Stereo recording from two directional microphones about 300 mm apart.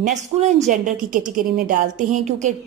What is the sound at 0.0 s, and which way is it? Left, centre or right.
A woman's voice, right.